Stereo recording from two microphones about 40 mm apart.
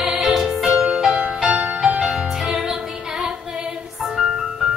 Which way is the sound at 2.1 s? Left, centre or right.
Centre.